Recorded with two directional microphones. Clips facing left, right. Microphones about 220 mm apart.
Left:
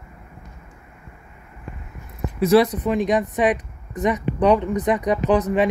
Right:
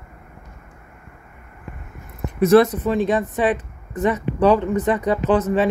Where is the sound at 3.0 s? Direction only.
20° left (ahead or behind).